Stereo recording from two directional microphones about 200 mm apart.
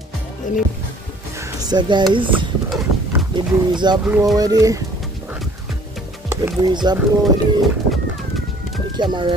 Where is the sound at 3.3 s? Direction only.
20° right (ahead or behind).